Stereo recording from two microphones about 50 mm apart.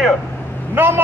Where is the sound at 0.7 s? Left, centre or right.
Right.